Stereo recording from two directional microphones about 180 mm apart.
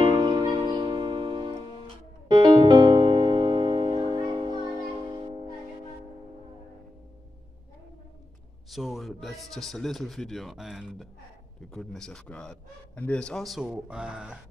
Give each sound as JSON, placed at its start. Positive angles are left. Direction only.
{"t": 0.0, "sound": "music", "side_deg": -25}
{"t": 2.2, "sound": "piano", "side_deg": -25}
{"t": 8.6, "sound": "a man's voice", "side_deg": 0}